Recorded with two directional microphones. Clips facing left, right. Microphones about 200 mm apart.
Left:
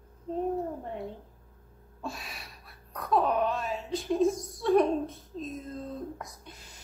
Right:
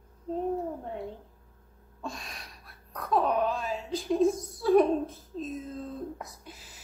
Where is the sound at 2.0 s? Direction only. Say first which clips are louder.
Even; 5° left (ahead or behind).